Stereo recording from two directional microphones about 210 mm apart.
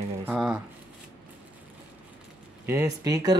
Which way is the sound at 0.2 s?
5° right (ahead or behind).